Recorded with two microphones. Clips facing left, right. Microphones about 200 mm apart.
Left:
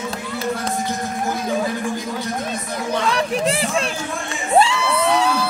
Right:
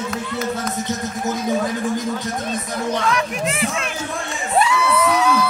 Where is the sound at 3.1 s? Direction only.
30° left (ahead or behind).